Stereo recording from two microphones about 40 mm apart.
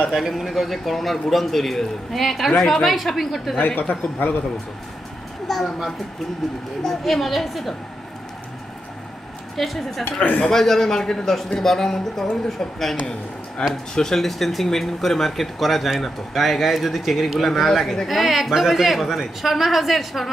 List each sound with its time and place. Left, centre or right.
0.1 s speech: centre
3.5 s a man's voice: left
5.5 s speech: centre
6.8 s speech: centre
9.6 s speech: centre